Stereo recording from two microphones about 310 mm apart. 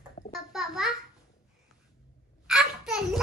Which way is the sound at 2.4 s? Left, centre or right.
Centre.